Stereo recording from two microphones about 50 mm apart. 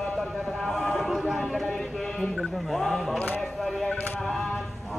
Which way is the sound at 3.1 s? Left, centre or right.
Left.